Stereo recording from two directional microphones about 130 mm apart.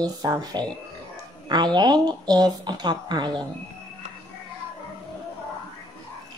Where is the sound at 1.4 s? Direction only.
35° right (ahead or behind).